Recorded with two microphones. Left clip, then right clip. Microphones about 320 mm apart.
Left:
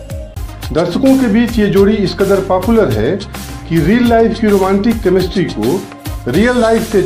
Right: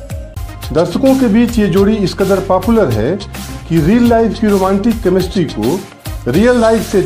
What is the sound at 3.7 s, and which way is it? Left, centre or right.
Speech, right.